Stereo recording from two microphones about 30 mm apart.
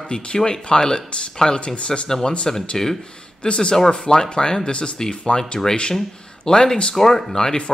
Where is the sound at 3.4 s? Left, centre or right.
Left.